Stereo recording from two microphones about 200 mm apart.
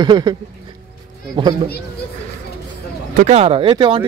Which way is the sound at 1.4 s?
25° right (ahead or behind).